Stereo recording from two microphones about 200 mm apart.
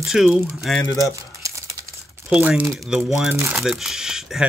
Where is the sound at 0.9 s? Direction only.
15° left (ahead or behind).